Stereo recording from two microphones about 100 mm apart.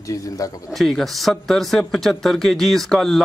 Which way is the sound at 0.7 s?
Centre (ahead or behind).